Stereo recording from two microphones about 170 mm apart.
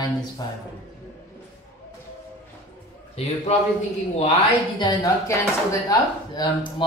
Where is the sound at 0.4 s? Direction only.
20° left (ahead or behind).